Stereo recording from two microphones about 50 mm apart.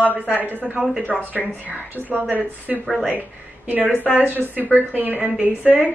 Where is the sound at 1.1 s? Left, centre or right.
Centre.